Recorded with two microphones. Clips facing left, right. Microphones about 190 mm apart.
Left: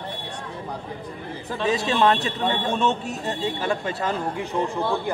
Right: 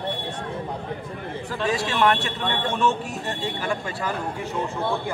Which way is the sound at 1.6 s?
20° left (ahead or behind).